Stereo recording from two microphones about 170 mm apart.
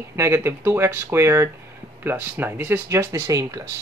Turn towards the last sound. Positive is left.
turn(degrees=-20)  # may be behind; listen again after turning